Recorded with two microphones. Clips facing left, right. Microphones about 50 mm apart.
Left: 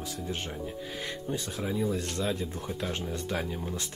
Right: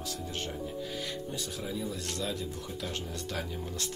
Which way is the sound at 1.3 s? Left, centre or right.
Left.